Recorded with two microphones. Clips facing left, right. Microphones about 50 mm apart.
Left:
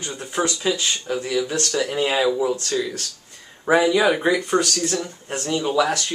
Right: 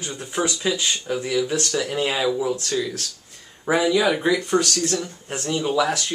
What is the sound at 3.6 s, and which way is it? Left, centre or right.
Speech, centre.